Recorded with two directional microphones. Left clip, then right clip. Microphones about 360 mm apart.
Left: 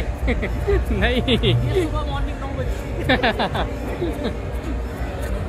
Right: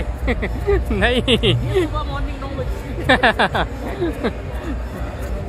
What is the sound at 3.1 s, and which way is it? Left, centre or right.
Speech, right.